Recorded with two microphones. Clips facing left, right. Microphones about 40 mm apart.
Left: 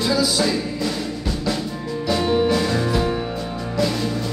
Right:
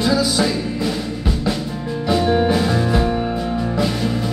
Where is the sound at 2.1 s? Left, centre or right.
Centre.